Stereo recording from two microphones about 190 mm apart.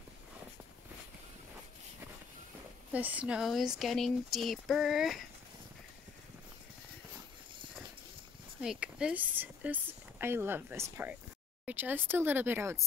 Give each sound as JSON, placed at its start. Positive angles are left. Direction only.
{"t": 2.9, "sound": "speech", "side_deg": -10}
{"t": 8.5, "sound": "speech", "side_deg": -5}